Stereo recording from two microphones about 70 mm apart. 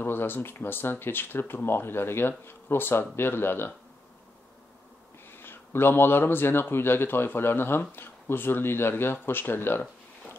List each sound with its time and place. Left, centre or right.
0.0 s speech: left
5.3 s speech: left